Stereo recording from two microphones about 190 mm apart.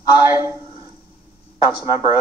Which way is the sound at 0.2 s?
10° right (ahead or behind).